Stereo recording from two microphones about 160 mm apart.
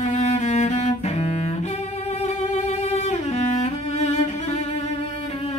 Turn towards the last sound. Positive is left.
turn(degrees=45)  # may be behind; listen again after turning